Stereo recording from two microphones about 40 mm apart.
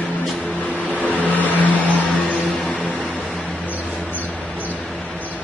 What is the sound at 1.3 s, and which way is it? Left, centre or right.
Vehicle, left.